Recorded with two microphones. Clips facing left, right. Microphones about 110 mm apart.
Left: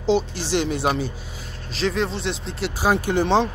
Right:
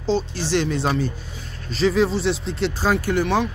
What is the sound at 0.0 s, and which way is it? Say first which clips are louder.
Speech: left 2 dB; 15° left (ahead or behind).